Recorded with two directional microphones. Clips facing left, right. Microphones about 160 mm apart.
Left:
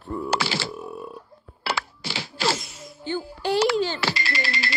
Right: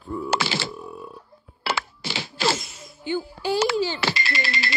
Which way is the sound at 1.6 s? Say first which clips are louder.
Right 1 dB; 20° right (ahead or behind).